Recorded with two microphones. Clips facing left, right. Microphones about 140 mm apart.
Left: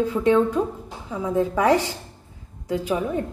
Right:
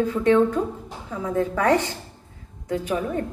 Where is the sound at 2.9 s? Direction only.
15° left (ahead or behind).